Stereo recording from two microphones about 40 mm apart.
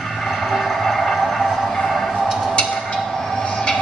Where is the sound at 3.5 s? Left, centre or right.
Left.